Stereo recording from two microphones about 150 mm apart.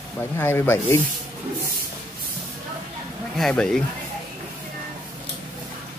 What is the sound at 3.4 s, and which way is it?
Speech, 5° left (ahead or behind).